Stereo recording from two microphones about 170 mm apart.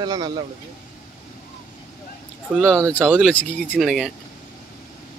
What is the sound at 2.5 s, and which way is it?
Speech, centre (ahead or behind).